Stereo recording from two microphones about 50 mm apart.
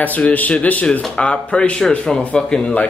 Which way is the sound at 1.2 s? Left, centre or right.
Centre.